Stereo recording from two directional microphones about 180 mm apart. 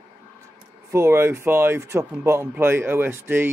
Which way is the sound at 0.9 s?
15° right (ahead or behind).